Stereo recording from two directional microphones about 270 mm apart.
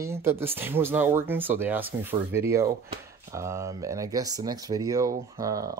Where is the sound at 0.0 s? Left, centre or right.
Centre.